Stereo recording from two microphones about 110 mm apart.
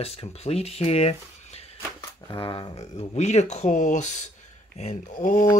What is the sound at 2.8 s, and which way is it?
Speech, 85° left.